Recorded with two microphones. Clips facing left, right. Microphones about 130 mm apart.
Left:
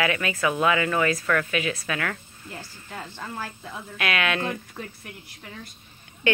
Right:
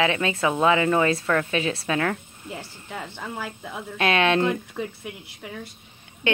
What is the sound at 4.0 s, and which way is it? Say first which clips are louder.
Speech: right 6 dB; 30° right (ahead or behind).